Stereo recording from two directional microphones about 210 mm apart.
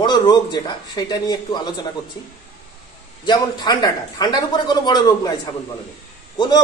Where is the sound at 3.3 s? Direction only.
20° left (ahead or behind).